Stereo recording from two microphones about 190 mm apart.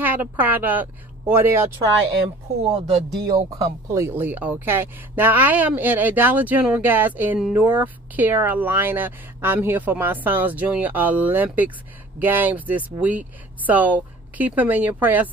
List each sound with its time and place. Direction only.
0.0 s speech: 10° right (ahead or behind)
2.7 s speech: 30° right (ahead or behind)
3.3 s speech: 20° right (ahead or behind)